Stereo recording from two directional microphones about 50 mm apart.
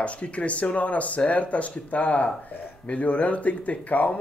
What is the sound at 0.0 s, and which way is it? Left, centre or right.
Speech, left.